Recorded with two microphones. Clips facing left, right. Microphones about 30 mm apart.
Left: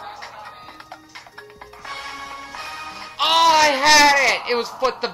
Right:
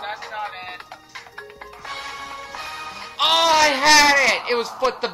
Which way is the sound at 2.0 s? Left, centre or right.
Centre.